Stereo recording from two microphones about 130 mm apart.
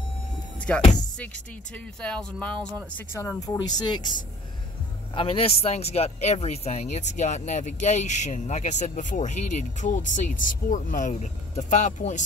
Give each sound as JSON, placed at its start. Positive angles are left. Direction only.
{"t": 0.7, "sound": "speech", "side_deg": 10}
{"t": 2.0, "sound": "speech", "side_deg": 10}
{"t": 3.2, "sound": "speech", "side_deg": 25}
{"t": 5.1, "sound": "speech", "side_deg": 45}